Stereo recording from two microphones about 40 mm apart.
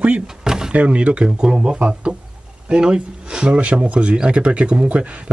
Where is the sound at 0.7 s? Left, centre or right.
Right.